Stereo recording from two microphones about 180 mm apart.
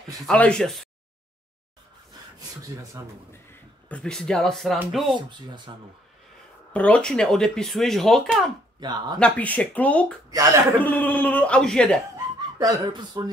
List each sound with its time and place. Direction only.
0.3 s speech: 5° left (ahead or behind)
3.9 s speech: 5° left (ahead or behind)
5.0 s speech: 25° right (ahead or behind)
6.7 s speech: 5° left (ahead or behind)
8.7 s speech: 25° right (ahead or behind)
9.2 s speech: 5° left (ahead or behind)
10.3 s speech: 20° right (ahead or behind)
10.8 s speech: 10° left (ahead or behind)
12.5 s speech: 25° right (ahead or behind)